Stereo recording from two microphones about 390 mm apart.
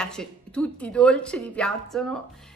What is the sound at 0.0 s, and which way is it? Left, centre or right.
Speech, centre.